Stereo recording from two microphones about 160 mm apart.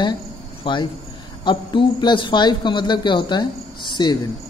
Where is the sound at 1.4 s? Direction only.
30° left (ahead or behind).